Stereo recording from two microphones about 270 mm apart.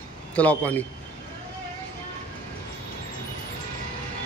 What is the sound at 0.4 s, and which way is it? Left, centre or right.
Speech, centre.